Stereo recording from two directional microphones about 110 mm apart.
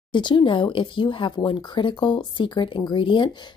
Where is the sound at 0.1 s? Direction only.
45° left (ahead or behind).